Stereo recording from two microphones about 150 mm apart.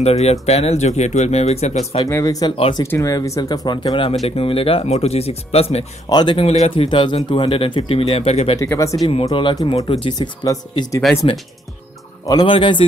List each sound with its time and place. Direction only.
0.0 s speech: 45° left (ahead or behind)
2.0 s speech: 20° left (ahead or behind); by 5.9 s 45° left (ahead or behind)
6.0 s speech: 30° left (ahead or behind)
8.5 s speech: 20° left (ahead or behind)
9.0 s speech: 35° left (ahead or behind)
12.3 s speech: 30° left (ahead or behind)